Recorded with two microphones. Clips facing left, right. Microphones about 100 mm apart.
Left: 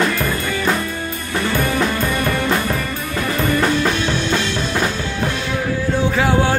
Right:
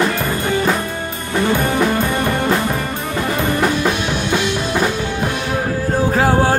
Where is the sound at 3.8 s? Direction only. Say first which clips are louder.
Right 1 dB; 15° right (ahead or behind).